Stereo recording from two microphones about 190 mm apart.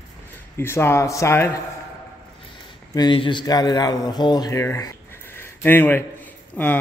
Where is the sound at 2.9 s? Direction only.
25° left (ahead or behind).